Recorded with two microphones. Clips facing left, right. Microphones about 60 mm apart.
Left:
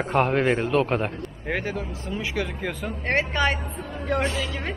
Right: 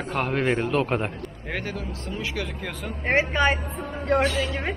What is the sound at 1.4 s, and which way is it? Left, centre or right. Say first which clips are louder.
Speech: left 3 dB; centre.